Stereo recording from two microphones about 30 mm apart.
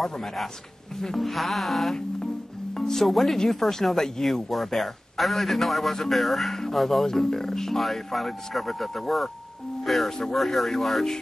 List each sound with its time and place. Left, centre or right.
0.0 s a man's voice: centre
7.1 s speech: centre
10.3 s a man's voice: centre